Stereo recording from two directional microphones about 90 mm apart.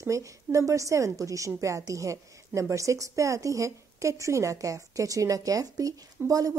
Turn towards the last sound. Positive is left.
turn(degrees=-40)  # may be behind; listen again after turning